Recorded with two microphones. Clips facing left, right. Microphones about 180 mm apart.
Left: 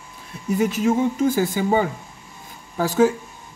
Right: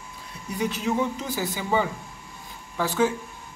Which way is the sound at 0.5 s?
45° left (ahead or behind).